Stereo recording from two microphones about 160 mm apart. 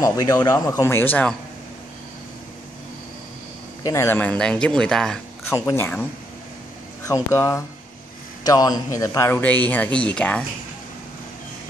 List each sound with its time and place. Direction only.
0.0 s speech: 20° left (ahead or behind)
3.8 s speech: 20° left (ahead or behind)
5.5 s speech: 15° left (ahead or behind)
7.1 s speech: 20° left (ahead or behind)